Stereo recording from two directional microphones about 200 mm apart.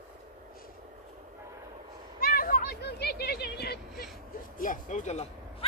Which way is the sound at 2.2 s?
45° left (ahead or behind).